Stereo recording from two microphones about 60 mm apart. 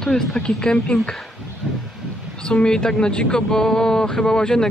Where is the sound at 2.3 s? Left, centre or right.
Centre.